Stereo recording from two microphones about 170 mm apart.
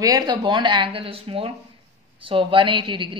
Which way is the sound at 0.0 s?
25° right (ahead or behind).